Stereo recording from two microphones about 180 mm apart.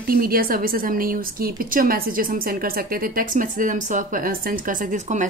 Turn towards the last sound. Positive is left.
turn(degrees=-45)  # may be behind; listen again after turning